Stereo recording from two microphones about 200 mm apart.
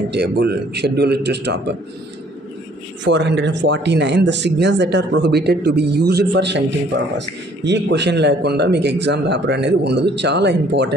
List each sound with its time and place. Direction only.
0.1 s a man's voice: 55° right (ahead or behind)
3.0 s a man's voice: 60° right (ahead or behind)